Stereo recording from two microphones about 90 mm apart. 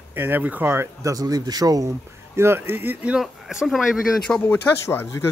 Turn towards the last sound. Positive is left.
turn(degrees=25)  # may be behind; listen again after turning